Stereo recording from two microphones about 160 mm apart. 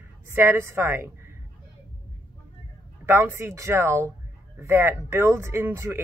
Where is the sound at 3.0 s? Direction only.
15° right (ahead or behind).